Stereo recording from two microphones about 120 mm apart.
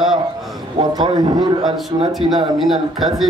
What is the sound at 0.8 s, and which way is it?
Speech, 35° right (ahead or behind).